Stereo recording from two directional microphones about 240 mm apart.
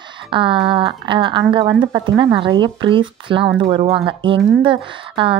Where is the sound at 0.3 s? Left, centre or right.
Right.